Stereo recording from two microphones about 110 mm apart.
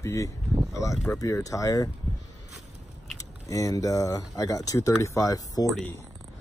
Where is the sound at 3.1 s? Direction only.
30° left (ahead or behind).